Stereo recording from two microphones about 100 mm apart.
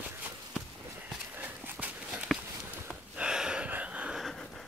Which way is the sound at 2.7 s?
10° right (ahead or behind).